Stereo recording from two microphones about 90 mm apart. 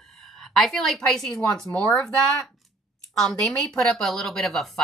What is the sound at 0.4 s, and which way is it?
A woman's voice, 5° left (ahead or behind).